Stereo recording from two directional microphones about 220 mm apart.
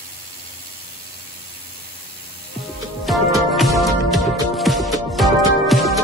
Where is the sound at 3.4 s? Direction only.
Centre (ahead or behind).